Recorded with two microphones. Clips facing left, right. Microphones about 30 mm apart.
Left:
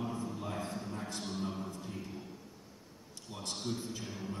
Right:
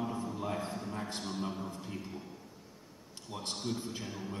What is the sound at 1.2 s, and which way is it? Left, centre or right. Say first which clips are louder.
Speech: right 1 dB; centre.